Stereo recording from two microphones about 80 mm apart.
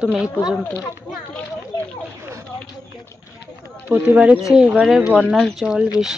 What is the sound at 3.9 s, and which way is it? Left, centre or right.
Speech, centre.